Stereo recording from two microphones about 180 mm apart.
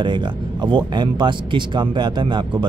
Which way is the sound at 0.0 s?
25° right (ahead or behind).